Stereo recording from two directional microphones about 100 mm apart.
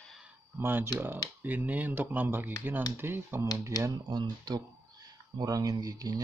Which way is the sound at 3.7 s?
35° right (ahead or behind).